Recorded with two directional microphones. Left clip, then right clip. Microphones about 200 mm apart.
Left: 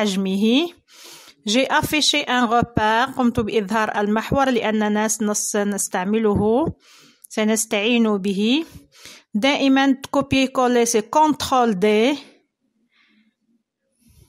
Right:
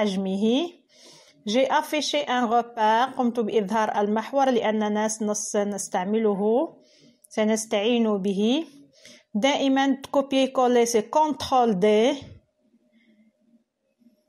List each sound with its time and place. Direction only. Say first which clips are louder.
0.0 s speech: left 3 dB; 25° left (ahead or behind)